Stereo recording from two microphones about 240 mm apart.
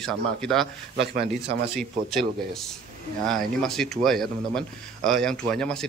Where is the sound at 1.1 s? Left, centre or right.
Right.